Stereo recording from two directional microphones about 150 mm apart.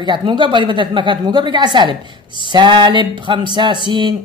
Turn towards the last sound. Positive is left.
turn(degrees=-30)  # may be behind; listen again after turning